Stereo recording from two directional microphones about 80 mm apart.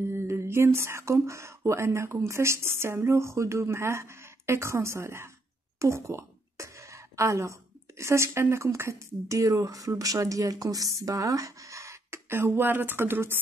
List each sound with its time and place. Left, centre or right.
0.0 s speech: right
5.8 s a sound: right
8.0 s speech: right